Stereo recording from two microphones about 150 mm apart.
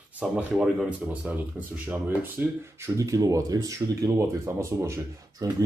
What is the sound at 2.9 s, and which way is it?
Speech, 20° right (ahead or behind).